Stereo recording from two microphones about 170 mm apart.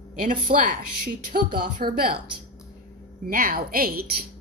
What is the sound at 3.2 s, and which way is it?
Speech, 55° right (ahead or behind).